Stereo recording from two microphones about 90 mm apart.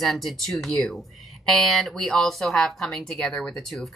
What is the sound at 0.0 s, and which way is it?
Speech, 5° left (ahead or behind).